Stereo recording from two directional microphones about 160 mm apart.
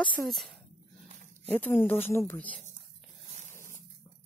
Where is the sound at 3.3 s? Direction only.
45° right (ahead or behind).